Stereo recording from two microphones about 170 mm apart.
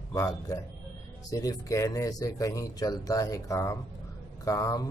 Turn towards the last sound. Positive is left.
turn(degrees=20)  # may be behind; listen again after turning